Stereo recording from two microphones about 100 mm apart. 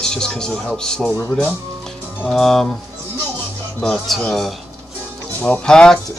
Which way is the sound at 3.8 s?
5° left (ahead or behind).